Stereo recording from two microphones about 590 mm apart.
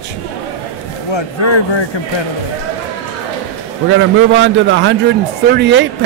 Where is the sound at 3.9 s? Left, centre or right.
Centre.